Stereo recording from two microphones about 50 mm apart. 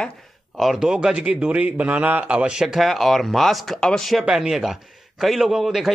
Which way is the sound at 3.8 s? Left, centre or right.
Centre.